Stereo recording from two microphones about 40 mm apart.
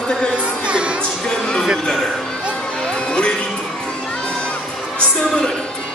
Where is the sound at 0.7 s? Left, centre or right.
Right.